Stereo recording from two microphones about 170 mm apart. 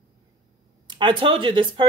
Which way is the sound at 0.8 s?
30° right (ahead or behind).